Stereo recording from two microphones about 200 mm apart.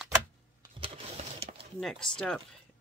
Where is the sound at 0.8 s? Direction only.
25° right (ahead or behind).